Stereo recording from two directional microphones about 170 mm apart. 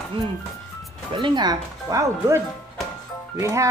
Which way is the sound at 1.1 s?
25° right (ahead or behind).